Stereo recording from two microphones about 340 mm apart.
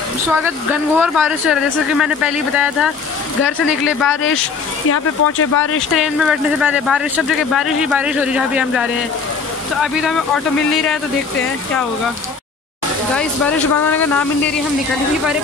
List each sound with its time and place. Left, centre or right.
0.9 s speech: centre
4.8 s speech: left
5.9 s speech: centre
13.1 s speech: centre